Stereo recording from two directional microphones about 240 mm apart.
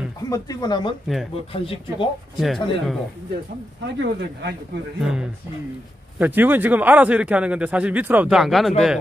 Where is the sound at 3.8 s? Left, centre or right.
Right.